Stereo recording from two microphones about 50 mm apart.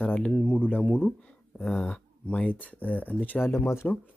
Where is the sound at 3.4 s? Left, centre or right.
Left.